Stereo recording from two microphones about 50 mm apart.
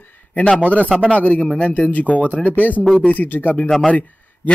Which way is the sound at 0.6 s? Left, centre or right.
Left.